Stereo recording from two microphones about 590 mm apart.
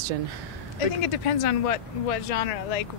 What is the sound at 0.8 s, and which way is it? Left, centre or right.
Speech, left.